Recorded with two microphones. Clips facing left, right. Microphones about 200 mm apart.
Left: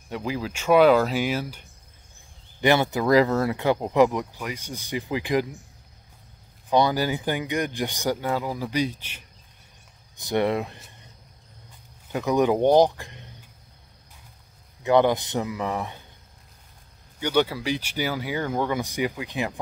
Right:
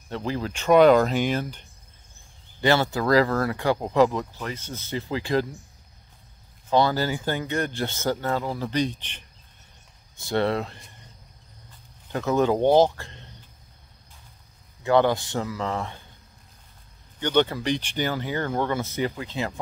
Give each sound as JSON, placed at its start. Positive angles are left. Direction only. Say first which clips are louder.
{"t": 0.1, "sound": "speech", "louder": "even", "side_deg": 10}
{"t": 2.6, "sound": "speech", "louder": "left 1 dB", "side_deg": 20}
{"t": 6.7, "sound": "speech", "louder": "even", "side_deg": 15}
{"t": 12.1, "sound": "speech", "louder": "left 1 dB", "side_deg": 15}
{"t": 14.8, "sound": "speech", "louder": "left 1 dB", "side_deg": 20}
{"t": 17.2, "sound": "speech", "louder": "right 1 dB", "side_deg": 10}